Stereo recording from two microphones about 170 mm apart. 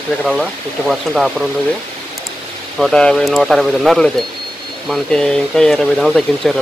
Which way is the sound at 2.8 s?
5° left (ahead or behind).